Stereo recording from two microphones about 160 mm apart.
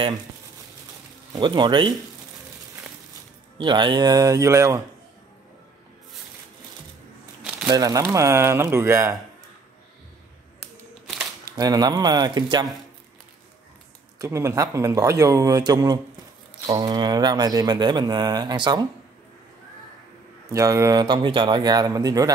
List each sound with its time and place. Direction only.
1.3 s speech: 30° right (ahead or behind)
3.5 s speech: 30° right (ahead or behind)
7.6 s speech: 25° right (ahead or behind)
11.5 s speech: 25° right (ahead or behind)
14.1 s speech: 20° right (ahead or behind)
20.4 s speech: 20° right (ahead or behind)